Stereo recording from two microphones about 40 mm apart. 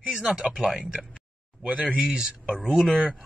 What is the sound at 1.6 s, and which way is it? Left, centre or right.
Speech, right.